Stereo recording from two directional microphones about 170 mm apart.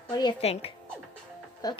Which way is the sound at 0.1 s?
25° left (ahead or behind).